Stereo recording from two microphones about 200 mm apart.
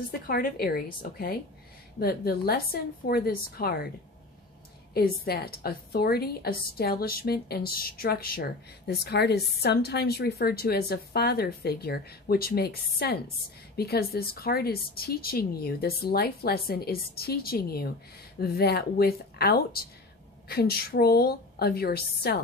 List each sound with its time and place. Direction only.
0.3 s a woman's voice: 45° left (ahead or behind)
4.9 s a woman's voice: 50° left (ahead or behind)